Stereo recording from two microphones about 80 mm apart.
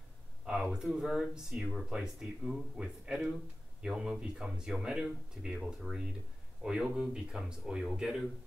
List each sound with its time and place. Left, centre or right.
0.5 s speech: centre